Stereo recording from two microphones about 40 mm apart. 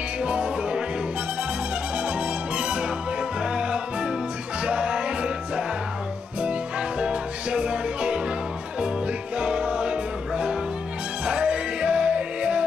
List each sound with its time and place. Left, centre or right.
0.2 s music: right
2.0 s music: right
7.0 s music: right
9.4 s music: right